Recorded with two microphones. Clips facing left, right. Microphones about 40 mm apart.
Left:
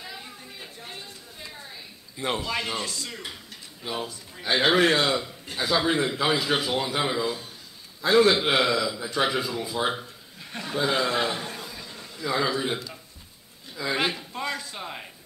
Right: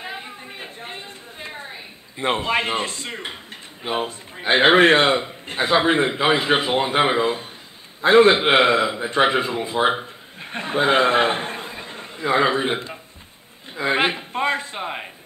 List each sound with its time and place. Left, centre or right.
0.0 s chatter: right
3.8 s a man's voice: right
13.7 s a sound: right